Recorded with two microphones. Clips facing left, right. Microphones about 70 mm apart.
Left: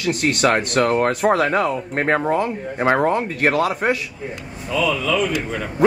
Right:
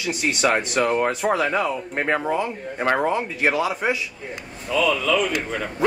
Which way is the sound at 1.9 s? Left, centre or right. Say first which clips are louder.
Left 4 dB; left.